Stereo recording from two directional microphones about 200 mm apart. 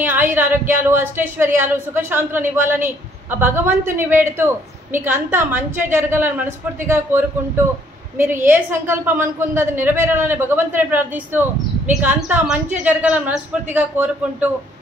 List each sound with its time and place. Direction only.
0.0 s speech: 10° right (ahead or behind)